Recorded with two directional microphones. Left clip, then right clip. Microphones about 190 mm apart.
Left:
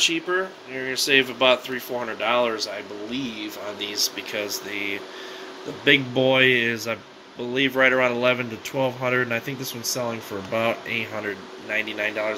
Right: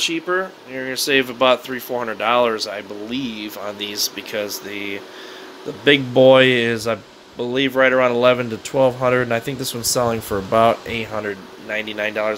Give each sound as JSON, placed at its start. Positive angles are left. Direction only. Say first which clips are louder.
{"t": 0.0, "sound": "speech", "louder": "right 2 dB", "side_deg": -20}
{"t": 11.8, "sound": "speech", "louder": "right 5 dB", "side_deg": -30}